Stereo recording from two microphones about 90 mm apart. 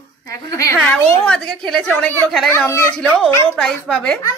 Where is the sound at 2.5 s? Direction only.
30° left (ahead or behind).